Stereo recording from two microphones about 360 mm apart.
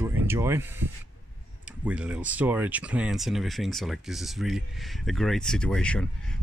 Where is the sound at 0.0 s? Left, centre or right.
Centre.